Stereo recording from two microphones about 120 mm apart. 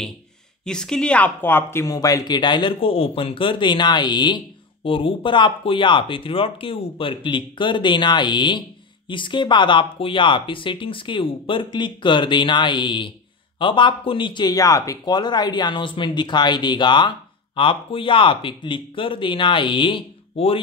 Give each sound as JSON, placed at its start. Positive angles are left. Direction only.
{"t": 0.7, "sound": "speech", "side_deg": 5}